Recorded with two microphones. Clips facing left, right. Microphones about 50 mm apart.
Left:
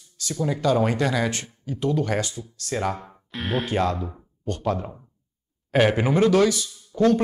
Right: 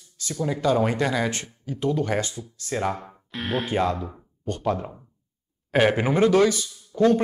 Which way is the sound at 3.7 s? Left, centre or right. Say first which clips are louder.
Even; centre.